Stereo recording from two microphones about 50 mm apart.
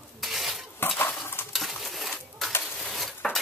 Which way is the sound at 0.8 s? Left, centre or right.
Left.